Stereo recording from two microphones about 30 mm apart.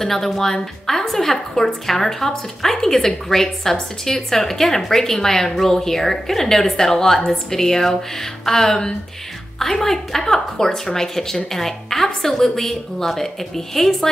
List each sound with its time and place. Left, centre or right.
0.0 s a woman's voice: centre